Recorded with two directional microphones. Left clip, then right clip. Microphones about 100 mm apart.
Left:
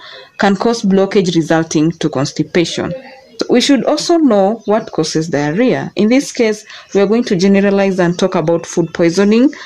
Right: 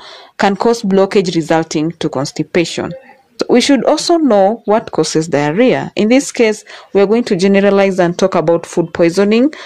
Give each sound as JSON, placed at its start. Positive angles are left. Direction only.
{"t": 0.4, "sound": "speech", "side_deg": -40}